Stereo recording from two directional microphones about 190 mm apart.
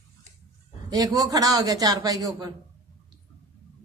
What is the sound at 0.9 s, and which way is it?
Speech, 20° right (ahead or behind).